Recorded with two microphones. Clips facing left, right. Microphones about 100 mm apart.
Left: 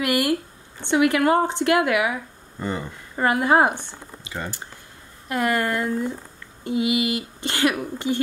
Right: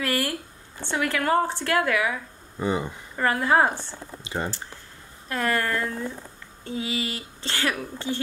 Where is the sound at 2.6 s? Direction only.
15° right (ahead or behind).